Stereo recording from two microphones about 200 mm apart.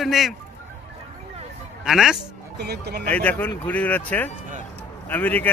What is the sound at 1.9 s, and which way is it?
Speech, centre (ahead or behind).